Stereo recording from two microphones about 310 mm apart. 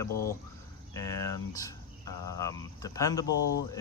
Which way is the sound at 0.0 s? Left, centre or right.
Centre.